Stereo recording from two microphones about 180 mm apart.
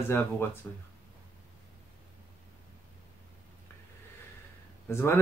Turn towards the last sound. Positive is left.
turn(degrees=15)  # may be behind; listen again after turning